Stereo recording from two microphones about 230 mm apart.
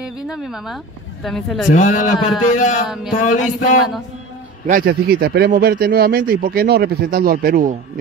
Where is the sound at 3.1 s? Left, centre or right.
Left.